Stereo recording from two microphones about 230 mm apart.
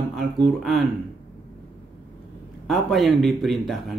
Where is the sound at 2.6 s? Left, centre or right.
Centre.